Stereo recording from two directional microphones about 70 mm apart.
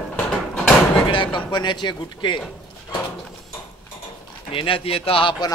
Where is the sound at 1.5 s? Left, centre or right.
Left.